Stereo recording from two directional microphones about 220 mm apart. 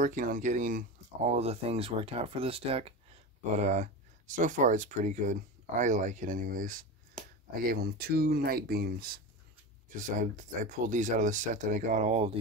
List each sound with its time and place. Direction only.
0.0 s speech: 35° right (ahead or behind)